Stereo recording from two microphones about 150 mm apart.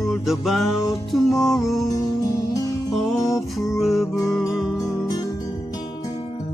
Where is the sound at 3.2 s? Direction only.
20° left (ahead or behind).